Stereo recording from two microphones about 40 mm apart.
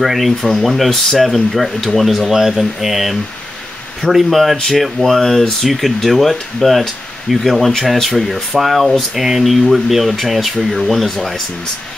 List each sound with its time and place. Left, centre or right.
0.0 s speech: centre
0.4 s speech: centre